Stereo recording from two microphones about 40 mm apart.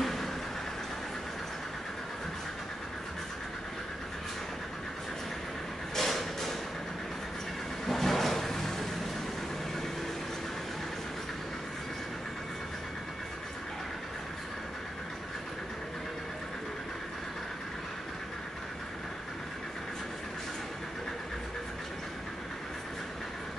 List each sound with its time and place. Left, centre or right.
0.0 s vehicle: centre
5.9 s a sound: centre
7.8 s vehicle: centre